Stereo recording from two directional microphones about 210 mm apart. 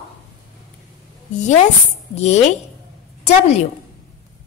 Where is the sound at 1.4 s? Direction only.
35° left (ahead or behind).